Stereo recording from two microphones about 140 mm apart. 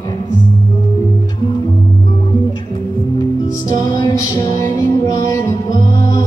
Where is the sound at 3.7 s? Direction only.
30° left (ahead or behind).